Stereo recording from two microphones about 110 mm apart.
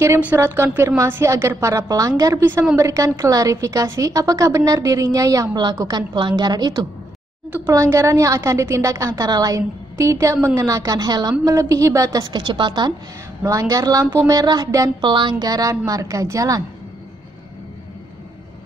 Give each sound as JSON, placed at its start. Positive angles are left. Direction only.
{"t": 0.4, "sound": "a woman's voice", "side_deg": -25}
{"t": 2.3, "sound": "a woman's voice", "side_deg": -20}
{"t": 7.7, "sound": "a woman's voice", "side_deg": -30}
{"t": 12.3, "sound": "a woman's voice", "side_deg": -45}
{"t": 13.4, "sound": "a woman's voice", "side_deg": -30}
{"t": 15.0, "sound": "a woman's voice", "side_deg": -45}